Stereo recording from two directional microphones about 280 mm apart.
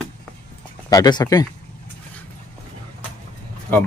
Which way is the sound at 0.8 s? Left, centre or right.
Centre.